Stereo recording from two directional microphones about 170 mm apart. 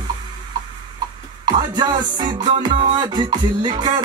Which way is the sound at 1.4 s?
25° right (ahead or behind).